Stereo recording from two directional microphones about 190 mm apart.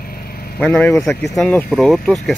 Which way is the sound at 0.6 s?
5° left (ahead or behind).